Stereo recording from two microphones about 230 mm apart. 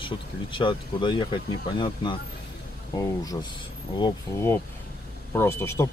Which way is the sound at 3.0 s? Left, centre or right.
Centre.